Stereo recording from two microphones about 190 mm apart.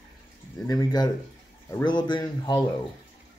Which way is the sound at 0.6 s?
20° left (ahead or behind).